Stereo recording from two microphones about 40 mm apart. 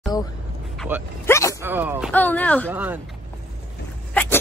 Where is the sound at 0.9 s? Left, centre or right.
Right.